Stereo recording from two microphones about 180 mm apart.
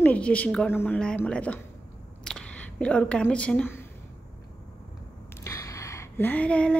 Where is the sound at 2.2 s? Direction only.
5° left (ahead or behind).